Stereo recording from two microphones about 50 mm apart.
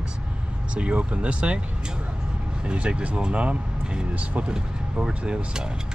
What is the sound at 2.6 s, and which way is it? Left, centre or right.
Speech, centre.